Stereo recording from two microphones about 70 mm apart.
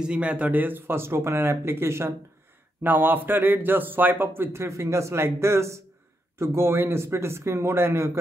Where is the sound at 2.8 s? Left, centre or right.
Right.